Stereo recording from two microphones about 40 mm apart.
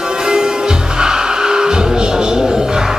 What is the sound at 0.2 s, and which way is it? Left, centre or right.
Music, centre.